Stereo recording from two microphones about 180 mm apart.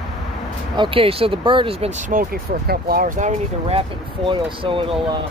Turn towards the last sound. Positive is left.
turn(degrees=-30)  # may be behind; listen again after turning